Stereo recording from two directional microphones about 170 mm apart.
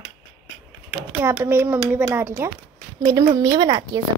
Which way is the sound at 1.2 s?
15° right (ahead or behind).